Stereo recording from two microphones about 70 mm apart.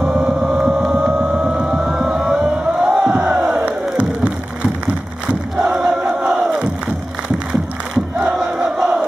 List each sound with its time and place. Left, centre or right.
0.0 s vehicle: centre
0.8 s a sound: centre
1.5 s music: centre
3.6 s crowd: centre
5.6 s crowd: centre
6.0 s battle cry: centre
8.4 s crowd: centre